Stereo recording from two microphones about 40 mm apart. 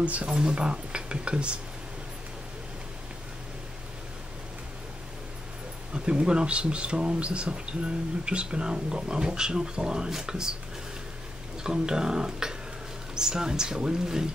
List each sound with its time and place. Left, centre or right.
0.0 s speech: right
5.9 s speech: right
11.6 s speech: centre